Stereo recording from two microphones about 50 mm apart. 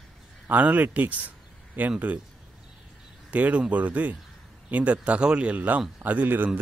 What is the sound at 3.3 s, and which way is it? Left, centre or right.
Speech, right.